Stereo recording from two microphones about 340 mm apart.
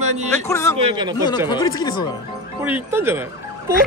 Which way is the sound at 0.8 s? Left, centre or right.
Centre.